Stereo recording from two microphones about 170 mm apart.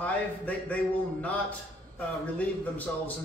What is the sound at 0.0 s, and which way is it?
Speech, 10° left (ahead or behind).